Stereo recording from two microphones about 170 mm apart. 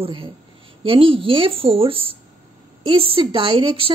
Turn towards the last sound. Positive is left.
turn(degrees=-35)  # may be behind; listen again after turning